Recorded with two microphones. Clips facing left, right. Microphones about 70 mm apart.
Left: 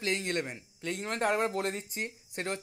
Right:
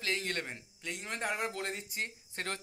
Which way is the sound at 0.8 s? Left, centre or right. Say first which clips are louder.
Left 7 dB; left.